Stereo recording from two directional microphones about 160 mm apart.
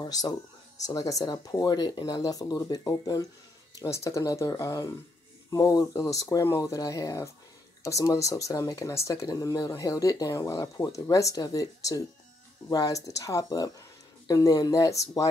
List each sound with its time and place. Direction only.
0.0 s speech: 25° left (ahead or behind)